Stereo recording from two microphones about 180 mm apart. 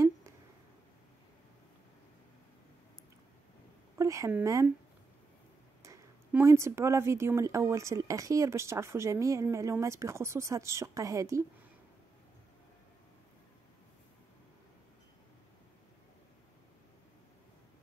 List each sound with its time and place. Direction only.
4.0 s speech: 15° right (ahead or behind)
5.8 s speech: 15° right (ahead or behind)